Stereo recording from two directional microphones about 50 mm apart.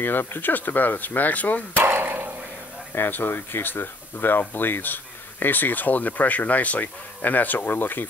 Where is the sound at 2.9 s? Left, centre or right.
Left.